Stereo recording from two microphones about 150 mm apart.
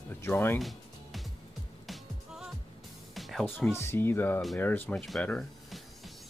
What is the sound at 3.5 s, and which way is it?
Speech, 15° left (ahead or behind).